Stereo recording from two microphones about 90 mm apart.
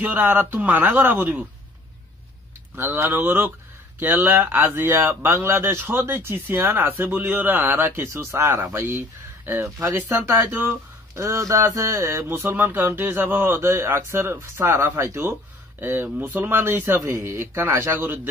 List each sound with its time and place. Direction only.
0.0 s speech: 20° right (ahead or behind)
2.7 s speech: 25° right (ahead or behind)